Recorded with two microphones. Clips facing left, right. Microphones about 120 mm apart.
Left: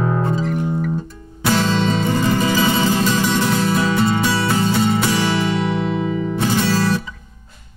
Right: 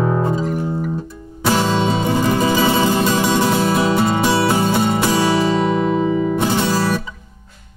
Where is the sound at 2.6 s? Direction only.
40° right (ahead or behind).